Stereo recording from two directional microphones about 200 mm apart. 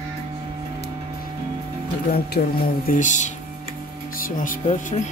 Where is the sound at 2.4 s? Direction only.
45° left (ahead or behind).